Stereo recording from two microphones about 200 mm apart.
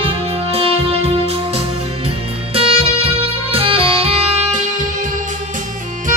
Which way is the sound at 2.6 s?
25° right (ahead or behind).